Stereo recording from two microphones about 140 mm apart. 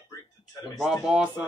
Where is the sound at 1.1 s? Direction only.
10° right (ahead or behind).